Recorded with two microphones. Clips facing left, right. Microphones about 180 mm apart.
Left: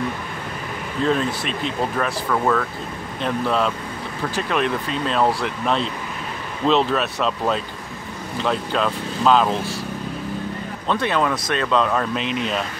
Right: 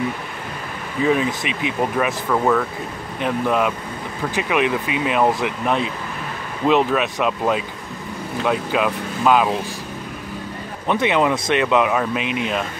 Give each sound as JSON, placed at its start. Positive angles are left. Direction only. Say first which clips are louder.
{"t": 1.0, "sound": "speech", "louder": "right 2 dB", "side_deg": -10}
{"t": 10.9, "sound": "speech", "louder": "right 3 dB", "side_deg": -20}